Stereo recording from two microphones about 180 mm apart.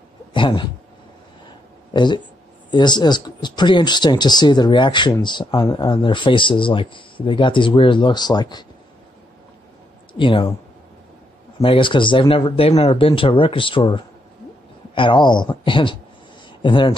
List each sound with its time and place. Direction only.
0.3 s a sound: 25° left (ahead or behind)
2.0 s speech: 25° left (ahead or behind)
10.1 s speech: 30° left (ahead or behind)
11.6 s speech: 30° left (ahead or behind)